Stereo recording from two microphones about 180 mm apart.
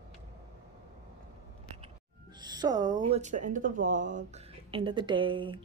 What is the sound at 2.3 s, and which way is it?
Speech, 25° right (ahead or behind).